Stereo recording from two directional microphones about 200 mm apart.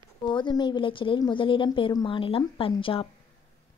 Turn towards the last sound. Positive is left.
turn(degrees=25)  # may be behind; listen again after turning